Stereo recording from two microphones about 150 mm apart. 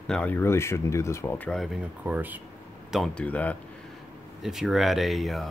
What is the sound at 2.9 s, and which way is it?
Speech, centre (ahead or behind).